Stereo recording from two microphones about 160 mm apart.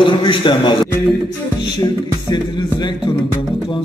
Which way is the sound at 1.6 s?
25° left (ahead or behind).